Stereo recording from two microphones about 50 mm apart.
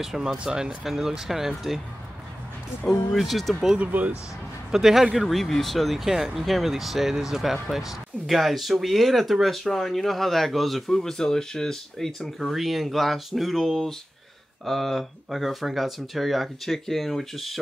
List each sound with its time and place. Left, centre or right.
0.0 s speech: centre
0.4 s speech: centre
0.8 s speech: centre
3.2 s speech: centre
3.7 s speech: right
4.6 s speech: centre
12.4 s speech: centre